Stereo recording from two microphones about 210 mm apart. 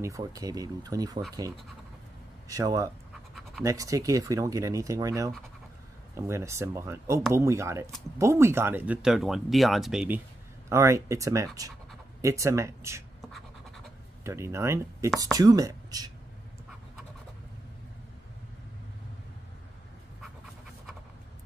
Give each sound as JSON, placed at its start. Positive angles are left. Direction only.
{"t": 0.0, "sound": "speech", "side_deg": -15}
{"t": 2.4, "sound": "speech", "side_deg": -15}
{"t": 14.2, "sound": "speech", "side_deg": -15}